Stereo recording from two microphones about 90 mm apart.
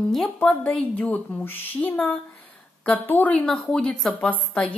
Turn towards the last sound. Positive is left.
turn(degrees=10)  # may be behind; listen again after turning